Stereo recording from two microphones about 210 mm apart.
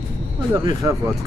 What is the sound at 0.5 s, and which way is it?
Speech, 15° right (ahead or behind).